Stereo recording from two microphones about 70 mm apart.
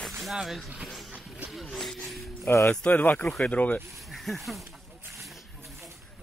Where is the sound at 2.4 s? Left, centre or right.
Left.